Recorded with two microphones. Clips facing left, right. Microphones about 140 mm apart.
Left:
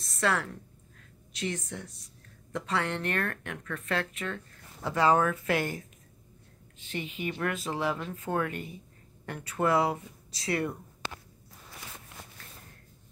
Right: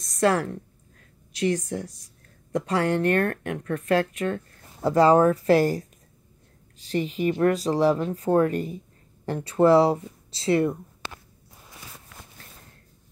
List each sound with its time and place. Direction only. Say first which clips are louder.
0.2 s speech: right 7 dB; 40° right (ahead or behind)